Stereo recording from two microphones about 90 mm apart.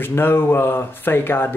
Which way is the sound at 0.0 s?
25° left (ahead or behind).